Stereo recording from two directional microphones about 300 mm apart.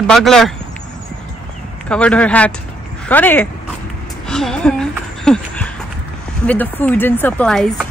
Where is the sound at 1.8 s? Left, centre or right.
Centre.